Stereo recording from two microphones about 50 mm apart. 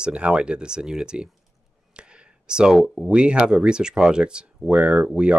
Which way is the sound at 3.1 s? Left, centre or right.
Right.